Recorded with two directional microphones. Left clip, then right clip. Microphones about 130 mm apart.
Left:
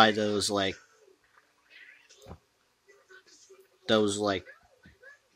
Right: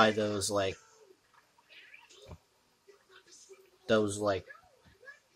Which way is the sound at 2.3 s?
25° left (ahead or behind).